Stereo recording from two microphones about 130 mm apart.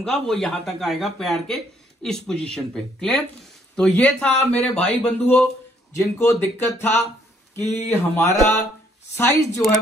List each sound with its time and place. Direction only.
0.3 s speech: 5° left (ahead or behind)
5.9 s speech: 20° left (ahead or behind)